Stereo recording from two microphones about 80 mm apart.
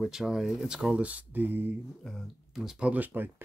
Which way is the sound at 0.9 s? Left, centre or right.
Centre.